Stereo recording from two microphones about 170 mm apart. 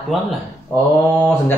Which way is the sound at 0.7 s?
10° left (ahead or behind).